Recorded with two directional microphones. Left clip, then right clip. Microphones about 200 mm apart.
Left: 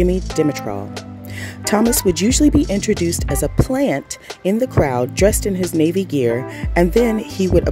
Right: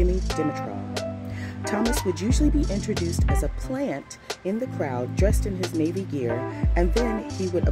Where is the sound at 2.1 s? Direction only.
50° left (ahead or behind).